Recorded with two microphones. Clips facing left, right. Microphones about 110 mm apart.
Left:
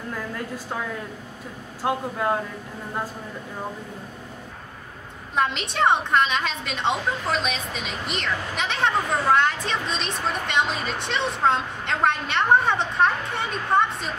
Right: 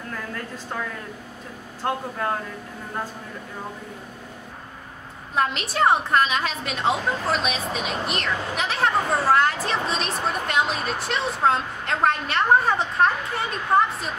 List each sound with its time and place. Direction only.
0.1 s a woman's voice: 10° left (ahead or behind)
5.3 s a woman's voice: centre (ahead or behind)